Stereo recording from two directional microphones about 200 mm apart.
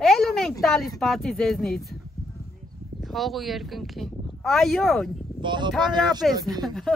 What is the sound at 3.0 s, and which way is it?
Speech, centre (ahead or behind).